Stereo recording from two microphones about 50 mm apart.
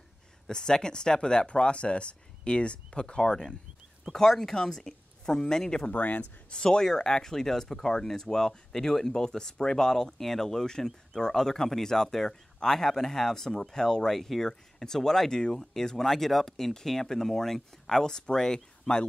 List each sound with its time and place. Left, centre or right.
0.5 s speech: centre
5.9 s speech: left
6.5 s speech: centre